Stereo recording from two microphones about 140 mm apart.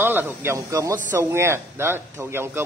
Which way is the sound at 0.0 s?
15° right (ahead or behind).